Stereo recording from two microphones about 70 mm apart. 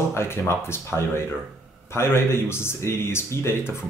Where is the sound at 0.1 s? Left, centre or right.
Left.